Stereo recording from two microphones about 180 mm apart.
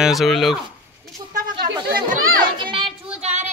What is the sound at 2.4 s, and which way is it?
Children playing, 25° right (ahead or behind).